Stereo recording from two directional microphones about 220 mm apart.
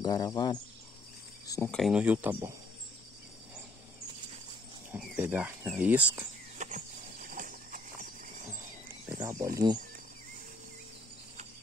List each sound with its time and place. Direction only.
0.0 s speech: 20° left (ahead or behind)
1.5 s speech: 5° left (ahead or behind)
4.9 s speech: 10° right (ahead or behind)
6.6 s horse: 35° right (ahead or behind)
8.5 s a sound: 10° right (ahead or behind)